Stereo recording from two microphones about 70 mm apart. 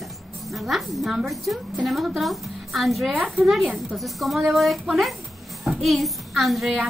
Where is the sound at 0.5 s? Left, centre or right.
Centre.